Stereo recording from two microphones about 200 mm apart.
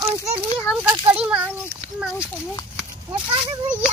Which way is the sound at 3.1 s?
25° right (ahead or behind).